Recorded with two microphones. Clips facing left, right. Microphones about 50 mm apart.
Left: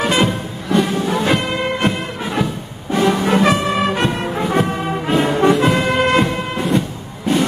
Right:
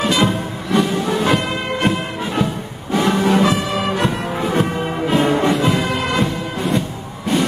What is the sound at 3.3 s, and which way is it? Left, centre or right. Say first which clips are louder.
Music: left 1 dB; left.